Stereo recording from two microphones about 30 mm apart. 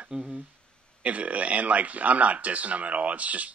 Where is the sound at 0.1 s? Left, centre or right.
Right.